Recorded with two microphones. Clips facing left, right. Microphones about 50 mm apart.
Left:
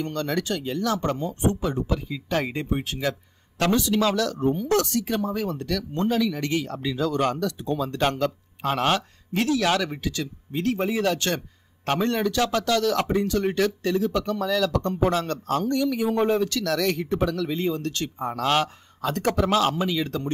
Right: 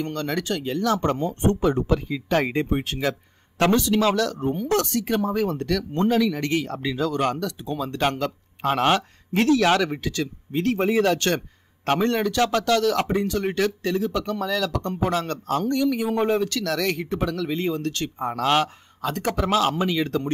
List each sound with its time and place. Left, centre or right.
0.0 s a man's voice: right
16.1 s speech: centre
16.3 s speech: right
18.4 s speech: centre